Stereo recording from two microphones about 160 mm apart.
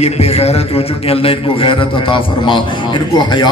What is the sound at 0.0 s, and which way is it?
A man's voice, 40° left (ahead or behind).